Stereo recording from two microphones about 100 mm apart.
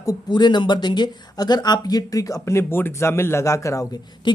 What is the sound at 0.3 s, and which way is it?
Speech, 50° left (ahead or behind).